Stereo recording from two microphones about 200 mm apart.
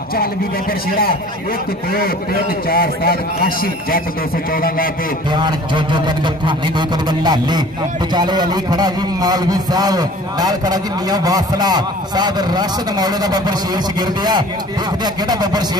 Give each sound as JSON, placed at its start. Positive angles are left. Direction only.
{"t": 2.0, "sound": "a man's voice", "side_deg": 50}
{"t": 5.3, "sound": "a man's voice", "side_deg": -20}